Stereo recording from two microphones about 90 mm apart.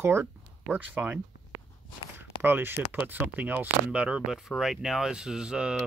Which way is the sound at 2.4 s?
25° right (ahead or behind).